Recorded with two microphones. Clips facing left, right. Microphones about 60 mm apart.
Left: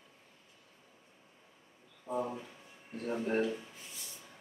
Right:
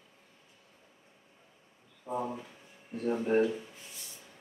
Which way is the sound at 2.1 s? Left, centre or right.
Right.